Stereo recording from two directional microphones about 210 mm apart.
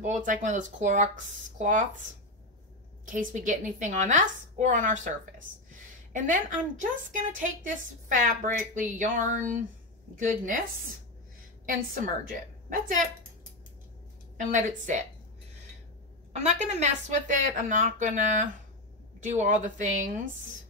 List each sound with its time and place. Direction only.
0.0 s speech: 35° right (ahead or behind)
3.1 s speech: 40° right (ahead or behind)
6.1 s speech: 40° right (ahead or behind)
8.3 s speech: 40° right (ahead or behind)
11.6 s a woman's voice: 40° right (ahead or behind)
14.3 s speech: 40° right (ahead or behind)
16.3 s speech: 35° right (ahead or behind)